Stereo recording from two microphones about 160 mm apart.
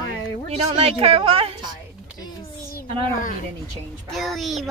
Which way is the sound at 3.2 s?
60° left (ahead or behind).